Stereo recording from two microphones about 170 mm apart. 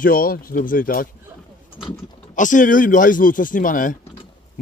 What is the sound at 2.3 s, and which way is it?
A man's voice, 50° left (ahead or behind).